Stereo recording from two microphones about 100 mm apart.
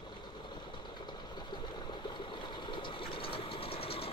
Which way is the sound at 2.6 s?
55° left (ahead or behind).